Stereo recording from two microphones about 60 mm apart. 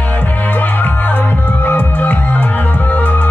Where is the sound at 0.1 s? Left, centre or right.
Left.